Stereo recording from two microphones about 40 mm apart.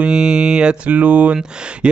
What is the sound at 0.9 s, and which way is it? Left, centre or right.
Speech, right.